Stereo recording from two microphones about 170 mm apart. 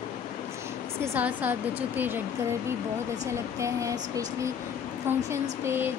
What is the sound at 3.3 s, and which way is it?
A woman's voice, 15° right (ahead or behind).